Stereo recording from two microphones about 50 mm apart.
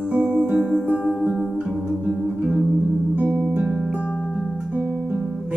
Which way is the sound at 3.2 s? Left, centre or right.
Right.